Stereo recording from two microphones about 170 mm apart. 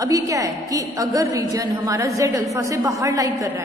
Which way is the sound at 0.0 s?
20° right (ahead or behind).